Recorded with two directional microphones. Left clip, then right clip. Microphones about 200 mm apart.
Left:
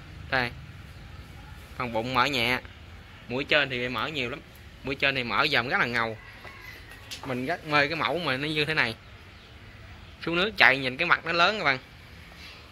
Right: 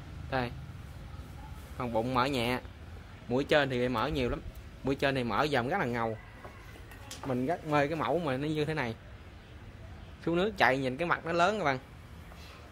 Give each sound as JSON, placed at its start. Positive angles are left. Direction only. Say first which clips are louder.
{"t": 0.3, "sound": "speech", "louder": "left 7 dB", "side_deg": 0}
{"t": 1.8, "sound": "speech", "louder": "left 4 dB", "side_deg": -5}
{"t": 3.3, "sound": "speech", "louder": "left 3 dB", "side_deg": -20}
{"t": 7.2, "sound": "speech", "louder": "left 2 dB", "side_deg": -5}
{"t": 10.2, "sound": "speech", "louder": "left 6 dB", "side_deg": -10}